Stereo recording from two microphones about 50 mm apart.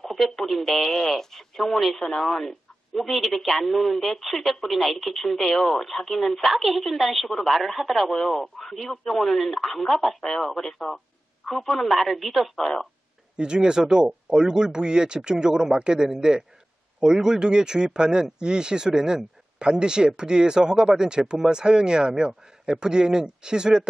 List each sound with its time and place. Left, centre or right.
0.0 s speech: centre
13.4 s speech: centre